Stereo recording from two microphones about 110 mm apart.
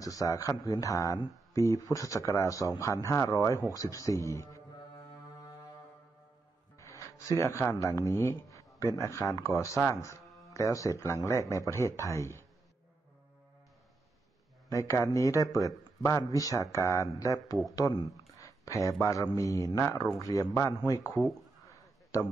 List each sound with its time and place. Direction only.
0.0 s a man's voice: 30° left (ahead or behind)
6.8 s a man's voice: 30° left (ahead or behind)
14.7 s a man's voice: 30° left (ahead or behind)